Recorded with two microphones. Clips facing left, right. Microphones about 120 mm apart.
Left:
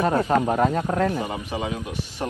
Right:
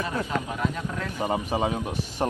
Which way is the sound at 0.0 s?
50° left (ahead or behind).